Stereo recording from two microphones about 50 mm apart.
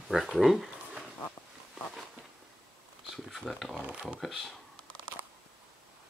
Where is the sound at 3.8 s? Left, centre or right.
Right.